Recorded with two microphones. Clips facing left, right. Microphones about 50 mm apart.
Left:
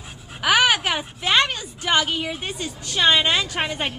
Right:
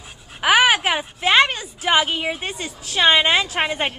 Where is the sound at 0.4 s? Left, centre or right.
Centre.